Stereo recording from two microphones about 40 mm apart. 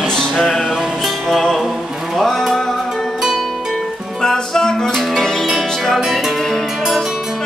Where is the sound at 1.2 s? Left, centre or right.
Centre.